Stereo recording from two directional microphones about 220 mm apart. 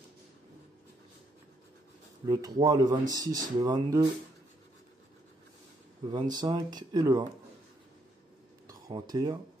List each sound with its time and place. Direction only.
2.2 s speech: 15° right (ahead or behind)
6.0 s speech: 20° right (ahead or behind)
8.6 s speech: 15° right (ahead or behind)